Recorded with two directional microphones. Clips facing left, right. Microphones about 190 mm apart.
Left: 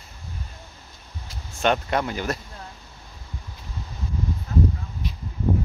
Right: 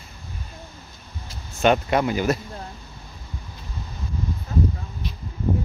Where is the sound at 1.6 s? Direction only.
10° right (ahead or behind).